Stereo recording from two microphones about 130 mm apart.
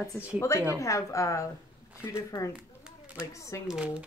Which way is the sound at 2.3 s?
35° left (ahead or behind).